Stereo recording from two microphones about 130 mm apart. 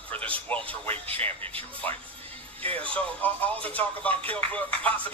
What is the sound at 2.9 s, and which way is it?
Speech, 10° left (ahead or behind).